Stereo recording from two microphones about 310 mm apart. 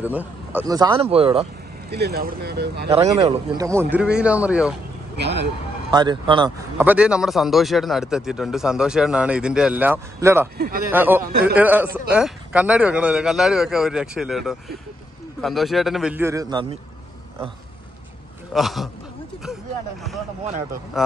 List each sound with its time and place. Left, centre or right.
0.0 s speech: centre
1.9 s speech: right
2.9 s a man's voice: centre
5.1 s speech: right
5.9 s a man's voice: centre
11.2 s speech: right
11.5 s a man's voice: centre
18.5 s a man's voice: centre
20.9 s a man's voice: centre